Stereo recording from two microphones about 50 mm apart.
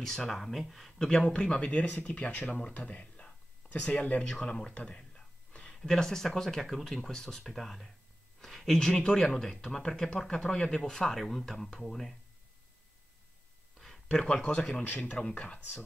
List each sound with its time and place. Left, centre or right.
0.0 s speech: centre
13.7 s a sound: centre
14.0 s speech: left
14.8 s speech: left